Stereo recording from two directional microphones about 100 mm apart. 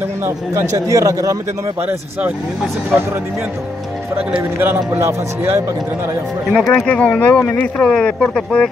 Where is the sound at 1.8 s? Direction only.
15° right (ahead or behind).